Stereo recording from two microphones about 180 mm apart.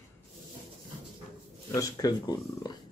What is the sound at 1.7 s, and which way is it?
Speech, 20° left (ahead or behind).